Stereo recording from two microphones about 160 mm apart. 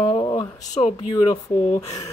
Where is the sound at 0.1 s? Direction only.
30° left (ahead or behind).